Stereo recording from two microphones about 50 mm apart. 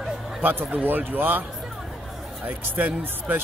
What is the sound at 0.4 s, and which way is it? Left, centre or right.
Speech, right.